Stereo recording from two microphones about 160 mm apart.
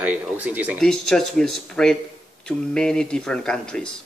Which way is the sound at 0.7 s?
5° left (ahead or behind).